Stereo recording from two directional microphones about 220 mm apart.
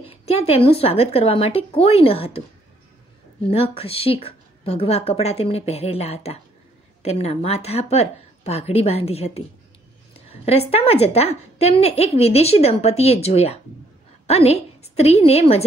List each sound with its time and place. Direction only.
0.0 s a woman's voice: 25° left (ahead or behind)
3.4 s a woman's voice: 25° left (ahead or behind)